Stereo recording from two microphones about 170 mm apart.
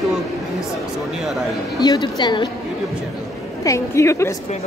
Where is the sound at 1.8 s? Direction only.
25° left (ahead or behind).